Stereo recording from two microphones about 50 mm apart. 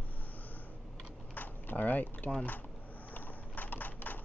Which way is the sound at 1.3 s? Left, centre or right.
Left.